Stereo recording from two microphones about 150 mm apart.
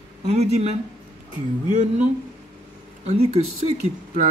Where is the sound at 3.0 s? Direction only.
45° right (ahead or behind).